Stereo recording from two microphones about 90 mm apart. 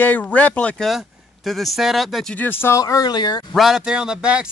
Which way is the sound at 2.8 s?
40° left (ahead or behind).